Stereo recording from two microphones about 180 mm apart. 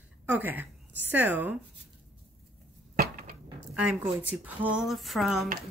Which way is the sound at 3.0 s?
55° right (ahead or behind).